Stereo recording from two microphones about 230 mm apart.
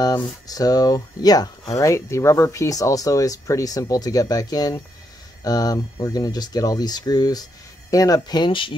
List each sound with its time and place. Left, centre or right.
0.0 s speech: centre